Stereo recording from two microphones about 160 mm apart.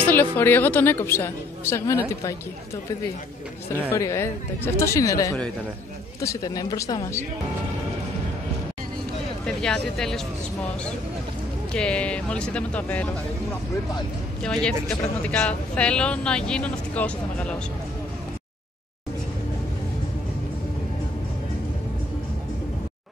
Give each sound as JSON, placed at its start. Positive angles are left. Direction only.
{"t": 0.0, "sound": "speech", "side_deg": 10}
{"t": 3.9, "sound": "speech", "side_deg": 15}
{"t": 9.6, "sound": "speech", "side_deg": 5}
{"t": 11.7, "sound": "speech", "side_deg": 5}
{"t": 14.4, "sound": "speech", "side_deg": 5}